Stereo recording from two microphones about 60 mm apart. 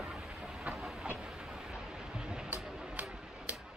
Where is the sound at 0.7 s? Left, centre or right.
Right.